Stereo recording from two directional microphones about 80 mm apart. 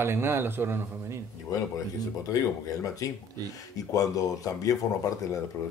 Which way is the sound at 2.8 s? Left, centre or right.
Left.